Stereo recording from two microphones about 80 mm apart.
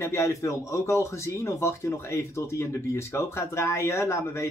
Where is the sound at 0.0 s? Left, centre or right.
Left.